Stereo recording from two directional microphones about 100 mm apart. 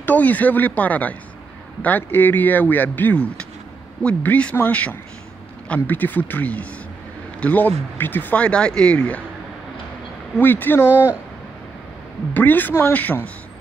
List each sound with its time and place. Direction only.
0.0 s speech: 15° left (ahead or behind)
10.4 s speech: 20° left (ahead or behind)
12.4 s speech: 20° left (ahead or behind)